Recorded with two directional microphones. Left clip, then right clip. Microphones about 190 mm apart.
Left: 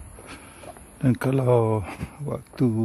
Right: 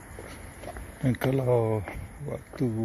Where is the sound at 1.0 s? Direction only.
30° left (ahead or behind).